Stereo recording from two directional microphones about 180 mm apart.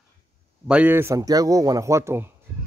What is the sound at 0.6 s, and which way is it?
A man's voice, 5° right (ahead or behind).